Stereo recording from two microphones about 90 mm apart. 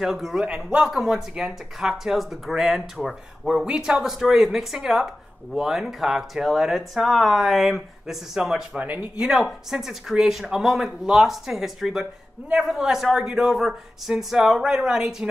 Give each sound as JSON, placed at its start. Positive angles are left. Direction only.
{"t": 0.0, "sound": "speech", "side_deg": -5}
{"t": 9.2, "sound": "speech", "side_deg": -5}